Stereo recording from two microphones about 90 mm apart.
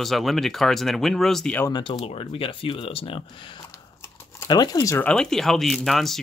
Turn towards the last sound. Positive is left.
turn(degrees=0)  # may be behind; listen again after turning